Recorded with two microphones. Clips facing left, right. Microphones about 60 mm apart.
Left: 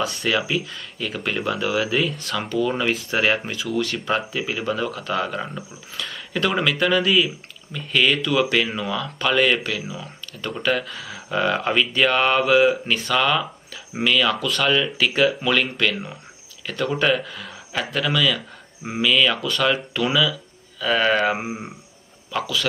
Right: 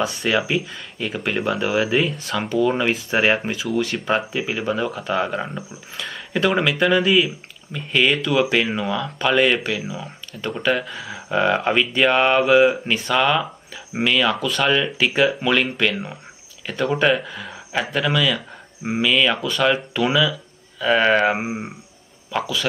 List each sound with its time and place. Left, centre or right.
0.0 s speech: centre
0.7 s speech: centre
3.6 s speech: centre